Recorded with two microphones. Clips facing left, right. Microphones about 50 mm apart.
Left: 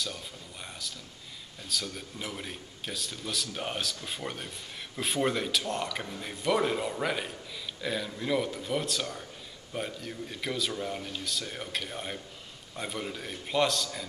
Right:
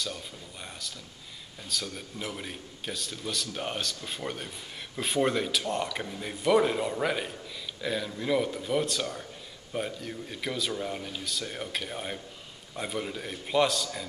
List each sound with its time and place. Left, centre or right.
1.7 s speech: centre